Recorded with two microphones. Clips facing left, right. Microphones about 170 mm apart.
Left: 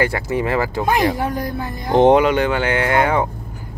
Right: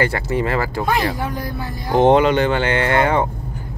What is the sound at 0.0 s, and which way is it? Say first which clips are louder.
Speech: even; 15° left (ahead or behind).